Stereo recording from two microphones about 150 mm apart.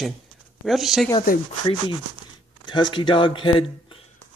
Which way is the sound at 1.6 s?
30° left (ahead or behind).